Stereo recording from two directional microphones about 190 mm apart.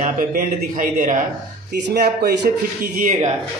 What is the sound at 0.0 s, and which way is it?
Speech, 45° right (ahead or behind).